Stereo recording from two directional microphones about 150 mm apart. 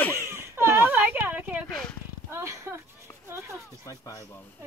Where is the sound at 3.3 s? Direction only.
20° right (ahead or behind).